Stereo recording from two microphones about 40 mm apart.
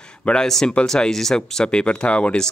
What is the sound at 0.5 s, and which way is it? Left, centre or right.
Speech, centre.